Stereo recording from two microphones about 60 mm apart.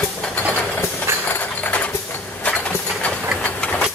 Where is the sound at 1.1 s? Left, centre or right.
Right.